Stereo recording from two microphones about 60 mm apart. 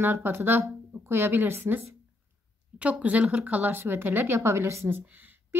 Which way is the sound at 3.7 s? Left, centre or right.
Right.